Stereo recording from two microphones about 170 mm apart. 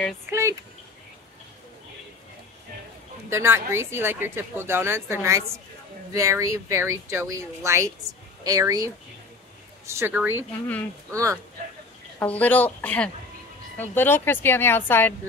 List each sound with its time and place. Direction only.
0.3 s a woman's voice: 15° right (ahead or behind)
3.3 s a woman's voice: 15° right (ahead or behind)
12.2 s speech: 10° left (ahead or behind)